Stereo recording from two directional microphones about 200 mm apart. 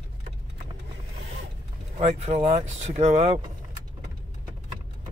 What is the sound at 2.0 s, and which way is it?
Speech, 30° right (ahead or behind).